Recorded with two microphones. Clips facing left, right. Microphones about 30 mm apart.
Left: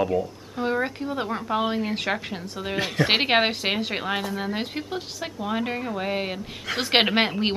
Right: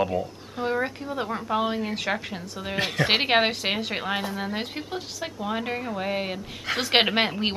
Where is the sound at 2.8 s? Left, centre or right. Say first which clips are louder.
Left 1 dB; centre.